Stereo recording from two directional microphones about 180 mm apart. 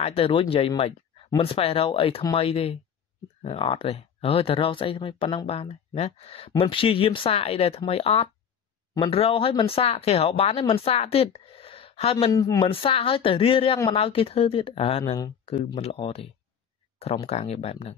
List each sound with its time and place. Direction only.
0.0 s speech: 35° left (ahead or behind)
12.4 s speech: 20° left (ahead or behind)